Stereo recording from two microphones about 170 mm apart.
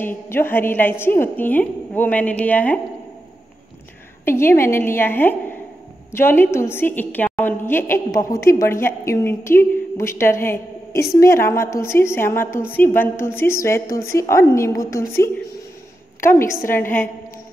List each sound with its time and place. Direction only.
0.0 s a woman's voice: 10° left (ahead or behind)
4.2 s a woman's voice: 15° left (ahead or behind)